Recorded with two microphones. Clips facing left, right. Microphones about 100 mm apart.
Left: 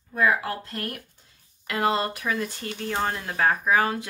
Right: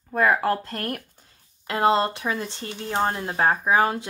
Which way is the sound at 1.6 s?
30° right (ahead or behind).